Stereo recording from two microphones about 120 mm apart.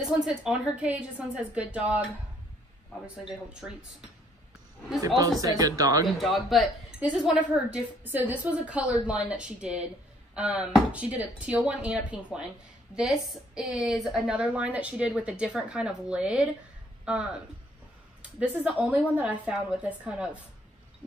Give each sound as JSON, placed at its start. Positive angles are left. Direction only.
{"t": 0.0, "sound": "a woman's voice", "side_deg": -5}
{"t": 3.6, "sound": "a woman's voice", "side_deg": -10}
{"t": 5.0, "sound": "speech", "side_deg": -30}
{"t": 6.0, "sound": "speech", "side_deg": 0}
{"t": 7.0, "sound": "a woman's voice", "side_deg": -10}